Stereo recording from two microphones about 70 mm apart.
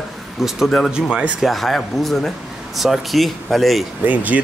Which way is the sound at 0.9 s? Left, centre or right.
Centre.